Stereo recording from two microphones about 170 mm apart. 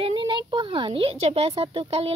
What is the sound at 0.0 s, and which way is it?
Speech, 30° right (ahead or behind).